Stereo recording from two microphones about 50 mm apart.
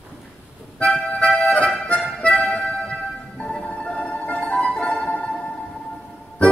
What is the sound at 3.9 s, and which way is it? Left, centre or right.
Music, left.